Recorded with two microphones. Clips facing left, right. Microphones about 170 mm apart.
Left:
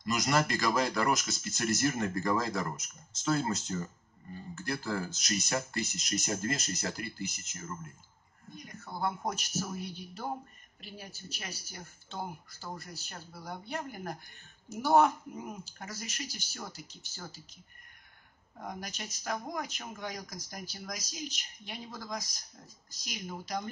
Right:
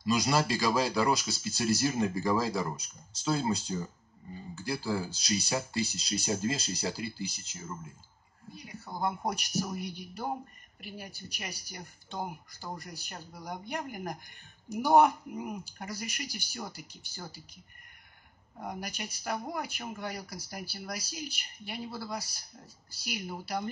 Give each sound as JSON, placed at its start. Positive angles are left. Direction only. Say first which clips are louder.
{"t": 0.1, "sound": "speech", "louder": "right 2 dB", "side_deg": -10}
{"t": 5.9, "sound": "speech", "louder": "right 2 dB", "side_deg": -30}
{"t": 6.1, "sound": "speech", "louder": "right 2 dB", "side_deg": -10}
{"t": 7.0, "sound": "speech", "louder": "right 3 dB", "side_deg": -90}
{"t": 7.5, "sound": "speech", "louder": "even", "side_deg": -10}
{"t": 18.6, "sound": "speech", "louder": "right 2 dB", "side_deg": -10}